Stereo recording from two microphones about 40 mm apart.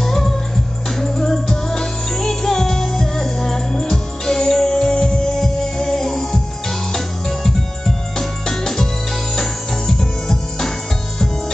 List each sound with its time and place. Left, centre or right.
0.0 s music: centre